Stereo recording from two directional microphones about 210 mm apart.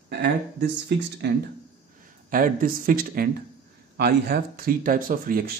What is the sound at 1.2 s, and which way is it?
Speech, 55° right (ahead or behind).